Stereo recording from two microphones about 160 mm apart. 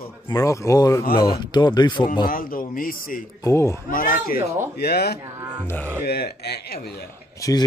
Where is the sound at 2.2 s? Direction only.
60° left (ahead or behind).